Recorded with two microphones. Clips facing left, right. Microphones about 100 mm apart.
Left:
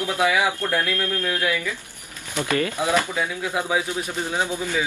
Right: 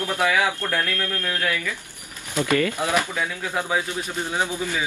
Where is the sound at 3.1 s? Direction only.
10° left (ahead or behind).